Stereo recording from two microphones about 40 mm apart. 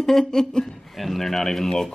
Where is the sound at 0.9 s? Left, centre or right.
Centre.